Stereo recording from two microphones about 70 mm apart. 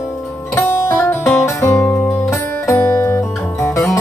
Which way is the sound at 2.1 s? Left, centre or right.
Left.